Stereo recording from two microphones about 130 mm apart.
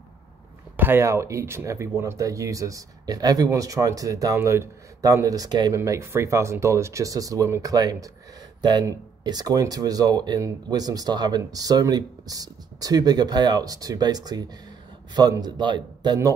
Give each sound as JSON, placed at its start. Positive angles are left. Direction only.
{"t": 0.7, "sound": "speech", "side_deg": -15}
{"t": 5.8, "sound": "speech", "side_deg": -20}